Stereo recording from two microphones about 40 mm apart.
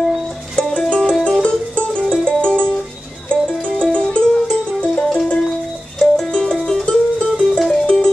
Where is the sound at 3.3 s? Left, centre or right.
Left.